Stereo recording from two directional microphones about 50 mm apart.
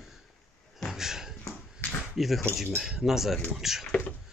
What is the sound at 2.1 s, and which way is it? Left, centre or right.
Speech, centre.